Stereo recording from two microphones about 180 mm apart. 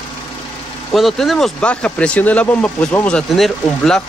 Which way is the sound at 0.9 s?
Centre (ahead or behind).